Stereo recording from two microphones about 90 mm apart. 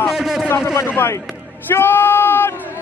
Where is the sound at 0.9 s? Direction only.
25° left (ahead or behind).